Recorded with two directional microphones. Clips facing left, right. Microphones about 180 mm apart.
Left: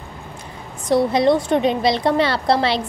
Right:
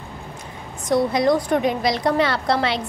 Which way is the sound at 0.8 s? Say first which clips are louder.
Left 2 dB; 30° left (ahead or behind).